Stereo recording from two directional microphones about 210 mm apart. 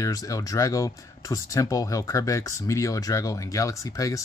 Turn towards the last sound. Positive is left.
turn(degrees=15)  # may be behind; listen again after turning